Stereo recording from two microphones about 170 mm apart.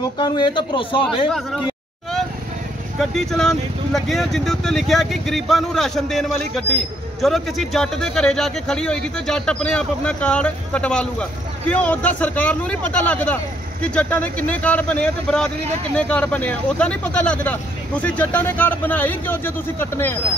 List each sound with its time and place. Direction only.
0.2 s a man's voice: 25° left (ahead or behind)
3.0 s speech: centre (ahead or behind)